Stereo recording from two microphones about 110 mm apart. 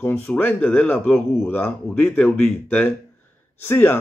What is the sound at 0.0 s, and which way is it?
A man's voice, 15° left (ahead or behind).